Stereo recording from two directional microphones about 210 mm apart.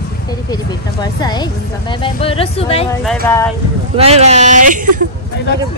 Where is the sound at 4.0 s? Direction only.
30° right (ahead or behind).